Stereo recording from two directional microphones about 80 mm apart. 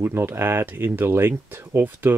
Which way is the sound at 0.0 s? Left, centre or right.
Right.